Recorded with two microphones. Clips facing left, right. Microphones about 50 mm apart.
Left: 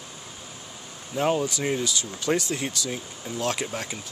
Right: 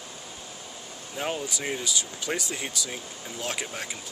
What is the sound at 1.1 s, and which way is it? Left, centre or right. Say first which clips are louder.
Speech: left 7 dB; centre.